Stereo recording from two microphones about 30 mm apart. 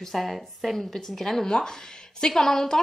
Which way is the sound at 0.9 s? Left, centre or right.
Centre.